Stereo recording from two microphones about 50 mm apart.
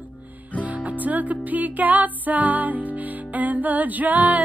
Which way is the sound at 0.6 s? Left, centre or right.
Right.